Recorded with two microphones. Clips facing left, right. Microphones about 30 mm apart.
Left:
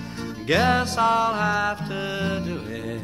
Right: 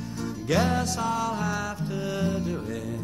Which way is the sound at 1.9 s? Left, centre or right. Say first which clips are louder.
Left 2 dB; left.